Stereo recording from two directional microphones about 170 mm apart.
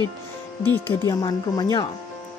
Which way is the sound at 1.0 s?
25° left (ahead or behind).